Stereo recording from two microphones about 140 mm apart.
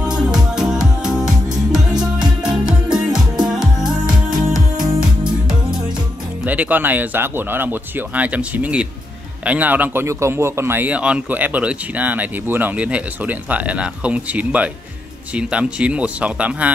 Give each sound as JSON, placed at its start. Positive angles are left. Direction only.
{"t": 0.0, "sound": "music", "side_deg": -5}
{"t": 4.0, "sound": "music", "side_deg": -30}
{"t": 4.5, "sound": "music", "side_deg": -5}
{"t": 6.4, "sound": "speech", "side_deg": -10}